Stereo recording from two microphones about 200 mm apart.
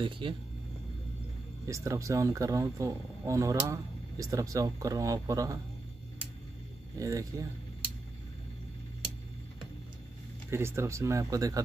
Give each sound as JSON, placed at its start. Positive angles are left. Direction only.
{"t": 0.2, "sound": "speech", "side_deg": -25}
{"t": 1.7, "sound": "speech", "side_deg": -15}
{"t": 7.0, "sound": "speech", "side_deg": -15}
{"t": 10.5, "sound": "speech", "side_deg": -10}